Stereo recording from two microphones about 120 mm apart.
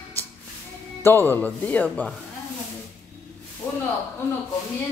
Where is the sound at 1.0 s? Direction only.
15° left (ahead or behind).